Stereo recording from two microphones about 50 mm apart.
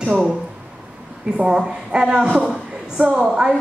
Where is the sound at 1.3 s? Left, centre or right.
Centre.